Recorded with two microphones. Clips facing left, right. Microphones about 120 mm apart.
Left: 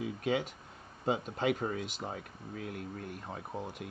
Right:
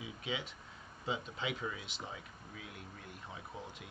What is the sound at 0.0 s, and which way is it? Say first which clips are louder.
Speech: left 9 dB; 50° left (ahead or behind).